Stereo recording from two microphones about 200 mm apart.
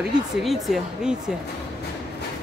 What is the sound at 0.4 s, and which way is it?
Speech, centre (ahead or behind).